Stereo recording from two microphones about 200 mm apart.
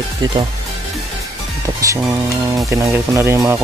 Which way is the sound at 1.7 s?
15° right (ahead or behind).